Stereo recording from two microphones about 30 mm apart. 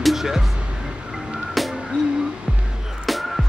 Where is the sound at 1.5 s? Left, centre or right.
Centre.